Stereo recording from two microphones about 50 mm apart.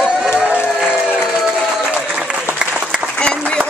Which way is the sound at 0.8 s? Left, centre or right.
Centre.